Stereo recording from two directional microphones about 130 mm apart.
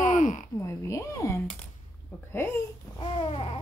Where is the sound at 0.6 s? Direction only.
20° left (ahead or behind).